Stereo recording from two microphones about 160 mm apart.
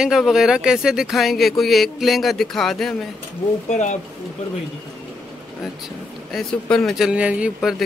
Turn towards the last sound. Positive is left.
turn(degrees=-5)  # may be behind; listen again after turning